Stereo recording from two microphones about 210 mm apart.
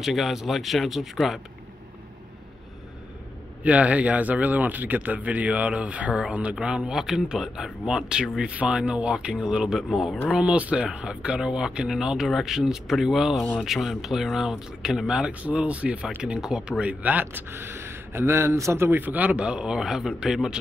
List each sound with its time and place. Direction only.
0.0 s speech: centre (ahead or behind)
3.6 s speech: 5° right (ahead or behind)